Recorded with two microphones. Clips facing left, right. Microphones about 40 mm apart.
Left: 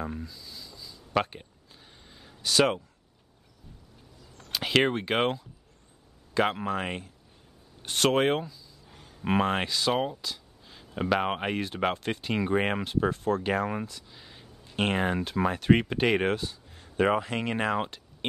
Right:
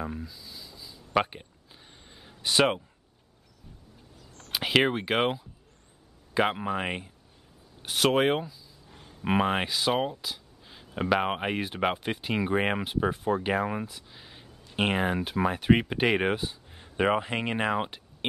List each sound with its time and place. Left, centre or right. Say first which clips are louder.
0.0 s a sound: even; centre
2.5 s speech: even; right
4.5 s speech: even; centre
7.8 s speech: even; centre